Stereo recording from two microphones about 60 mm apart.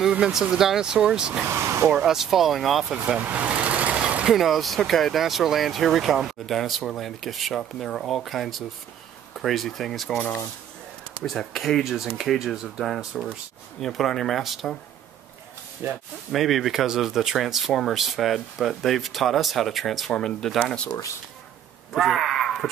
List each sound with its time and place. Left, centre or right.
0.2 s speech: centre
1.5 s speech: right
1.9 s speech: centre
3.2 s speech: right
3.4 s vehicle: right
4.3 s speech: centre
11.2 s speech: centre
11.8 s speech: centre
15.8 s speech: right
16.3 s speech: centre
21.9 s a sound: centre